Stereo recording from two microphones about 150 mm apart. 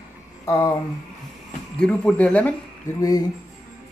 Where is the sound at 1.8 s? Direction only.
5° left (ahead or behind).